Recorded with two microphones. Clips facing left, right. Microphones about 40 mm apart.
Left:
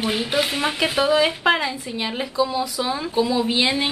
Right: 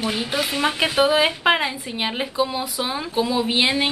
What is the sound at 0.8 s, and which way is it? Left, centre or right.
A woman's voice, right.